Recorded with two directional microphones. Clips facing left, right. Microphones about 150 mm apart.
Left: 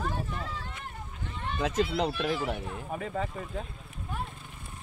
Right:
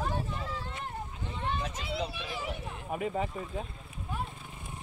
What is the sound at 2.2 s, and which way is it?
Speech, 75° left (ahead or behind).